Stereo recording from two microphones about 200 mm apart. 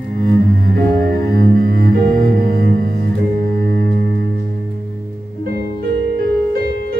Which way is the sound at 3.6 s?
50° right (ahead or behind).